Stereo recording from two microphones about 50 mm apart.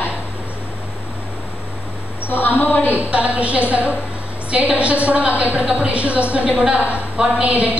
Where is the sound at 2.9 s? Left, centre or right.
Right.